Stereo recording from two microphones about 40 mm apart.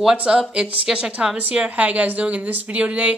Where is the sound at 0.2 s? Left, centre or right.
Right.